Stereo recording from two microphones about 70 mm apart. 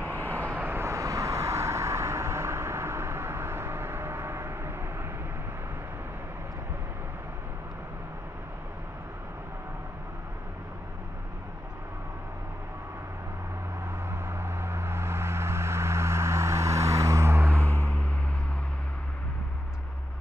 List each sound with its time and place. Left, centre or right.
0.2 s vehicle: right
0.8 s vehicle: right
14.2 s vehicle: right
17.6 s vehicle: left